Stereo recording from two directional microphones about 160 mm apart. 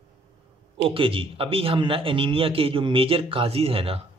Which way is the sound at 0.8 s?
35° right (ahead or behind).